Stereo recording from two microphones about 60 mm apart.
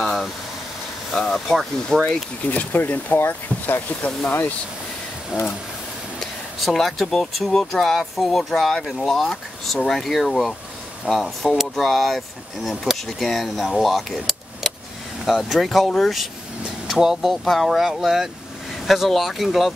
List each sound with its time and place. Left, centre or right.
0.0 s vehicle: centre
1.1 s speech: centre
2.5 s speech: left
6.1 s speech: centre